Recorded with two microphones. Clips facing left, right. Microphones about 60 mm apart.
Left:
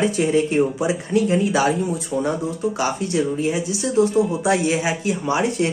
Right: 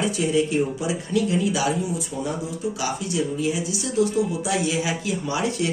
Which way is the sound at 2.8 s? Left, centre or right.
Left.